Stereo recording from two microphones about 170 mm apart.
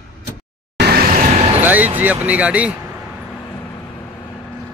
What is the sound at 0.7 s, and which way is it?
Vehicle, 70° right (ahead or behind).